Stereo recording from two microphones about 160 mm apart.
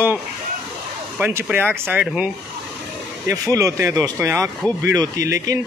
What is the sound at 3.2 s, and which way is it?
Speech, 20° right (ahead or behind).